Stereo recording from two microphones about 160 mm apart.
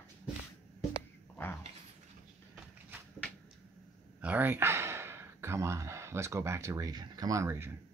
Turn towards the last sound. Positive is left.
turn(degrees=-15)  # may be behind; listen again after turning